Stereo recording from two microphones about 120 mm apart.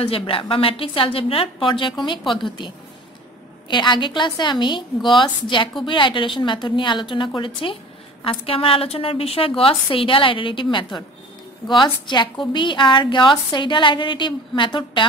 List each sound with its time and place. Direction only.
0.0 s a woman's voice: 50° left (ahead or behind)